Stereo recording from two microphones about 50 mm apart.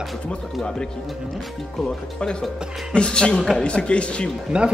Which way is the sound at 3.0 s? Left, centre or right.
Left.